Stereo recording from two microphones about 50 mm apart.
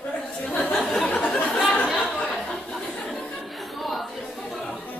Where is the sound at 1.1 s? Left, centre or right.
Left.